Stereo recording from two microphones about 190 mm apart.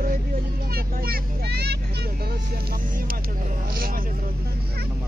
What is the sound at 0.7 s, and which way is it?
Vehicle, 55° right (ahead or behind).